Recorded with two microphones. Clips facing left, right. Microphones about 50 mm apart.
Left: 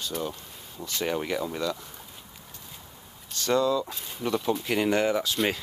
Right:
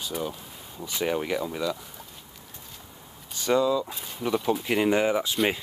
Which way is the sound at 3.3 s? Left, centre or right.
Centre.